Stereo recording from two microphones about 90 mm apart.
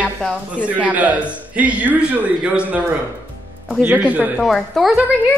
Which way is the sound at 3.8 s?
20° right (ahead or behind).